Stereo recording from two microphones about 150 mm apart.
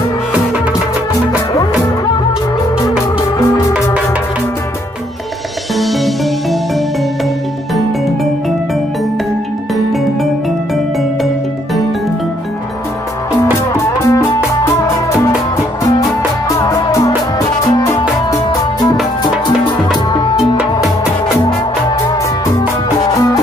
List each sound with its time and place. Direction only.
5.8 s music: centre (ahead or behind)
13.4 s music: 20° left (ahead or behind)
20.1 s music: 30° left (ahead or behind)
23.0 s music: 25° left (ahead or behind)